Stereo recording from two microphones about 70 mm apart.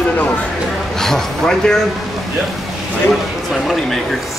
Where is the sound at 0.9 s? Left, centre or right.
Centre.